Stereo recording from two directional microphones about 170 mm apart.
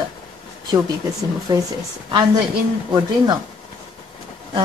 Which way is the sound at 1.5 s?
20° right (ahead or behind).